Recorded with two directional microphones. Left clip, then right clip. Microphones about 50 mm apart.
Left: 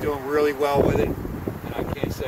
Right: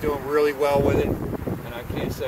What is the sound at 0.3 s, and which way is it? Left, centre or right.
Speech, left.